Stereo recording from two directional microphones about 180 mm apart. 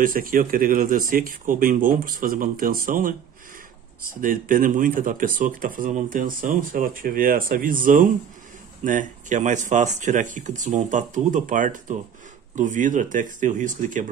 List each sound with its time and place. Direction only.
0.0 s speech: 50° right (ahead or behind)